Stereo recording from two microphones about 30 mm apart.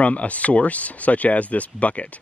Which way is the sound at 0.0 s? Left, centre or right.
Left.